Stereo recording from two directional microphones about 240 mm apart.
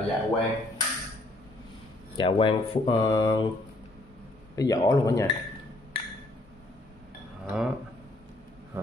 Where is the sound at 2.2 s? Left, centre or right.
Left.